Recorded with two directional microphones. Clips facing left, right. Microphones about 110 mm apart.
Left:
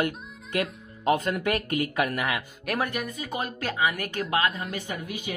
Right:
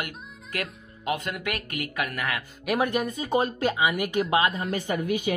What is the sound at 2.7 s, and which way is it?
Speech, 20° right (ahead or behind).